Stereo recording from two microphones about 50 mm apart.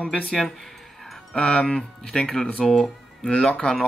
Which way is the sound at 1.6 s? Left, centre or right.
Centre.